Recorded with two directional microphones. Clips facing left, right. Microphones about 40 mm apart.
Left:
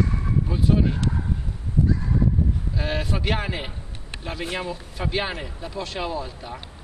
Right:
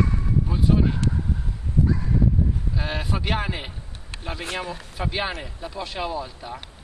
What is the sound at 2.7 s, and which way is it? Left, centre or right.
Speech, centre.